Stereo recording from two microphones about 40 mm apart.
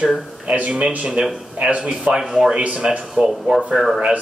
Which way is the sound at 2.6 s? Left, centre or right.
Right.